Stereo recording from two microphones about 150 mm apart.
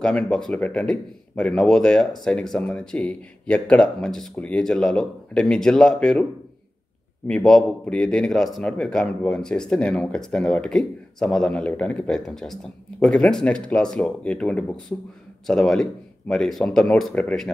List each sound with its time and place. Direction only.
0.0 s speech: 5° left (ahead or behind)
7.2 s speech: 5° left (ahead or behind)